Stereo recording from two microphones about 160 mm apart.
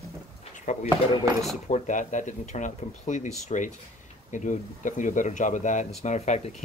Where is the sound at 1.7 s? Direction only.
50° left (ahead or behind).